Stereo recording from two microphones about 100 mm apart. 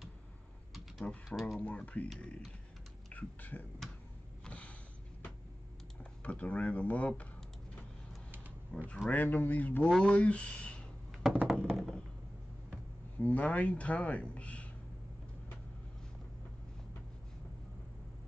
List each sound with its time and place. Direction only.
1.3 s speech: centre (ahead or behind)
1.6 s a man's voice: 15° left (ahead or behind)
4.5 s sniff: 15° left (ahead or behind)
6.2 s a man's voice: 15° left (ahead or behind)
8.7 s a man's voice: 15° left (ahead or behind)
11.1 s a sound: 5° right (ahead or behind)
13.2 s speech: 15° left (ahead or behind)